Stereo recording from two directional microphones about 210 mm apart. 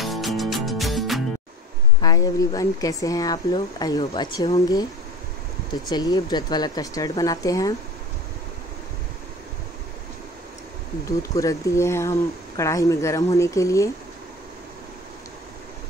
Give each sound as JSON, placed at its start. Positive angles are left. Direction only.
{"t": 0.0, "sound": "music", "side_deg": 0}
{"t": 2.0, "sound": "speech", "side_deg": 15}
{"t": 5.9, "sound": "speech", "side_deg": 20}
{"t": 11.1, "sound": "speech", "side_deg": 15}